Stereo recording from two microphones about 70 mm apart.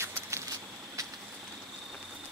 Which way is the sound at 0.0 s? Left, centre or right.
Right.